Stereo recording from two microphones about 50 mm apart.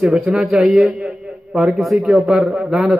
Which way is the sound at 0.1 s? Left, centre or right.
Centre.